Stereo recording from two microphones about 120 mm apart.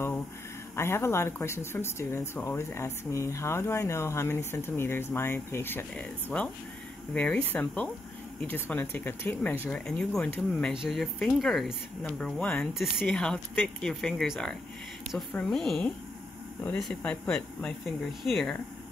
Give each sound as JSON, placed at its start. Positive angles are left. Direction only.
{"t": 0.7, "sound": "speech", "side_deg": 20}
{"t": 12.7, "sound": "speech", "side_deg": -5}